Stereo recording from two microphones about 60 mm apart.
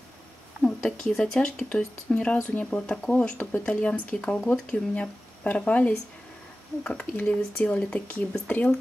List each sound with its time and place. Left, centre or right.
0.7 s speech: centre; by 8.7 s left